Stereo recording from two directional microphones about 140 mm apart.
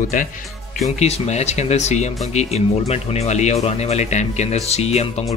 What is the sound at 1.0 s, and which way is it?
Speech, 50° left (ahead or behind).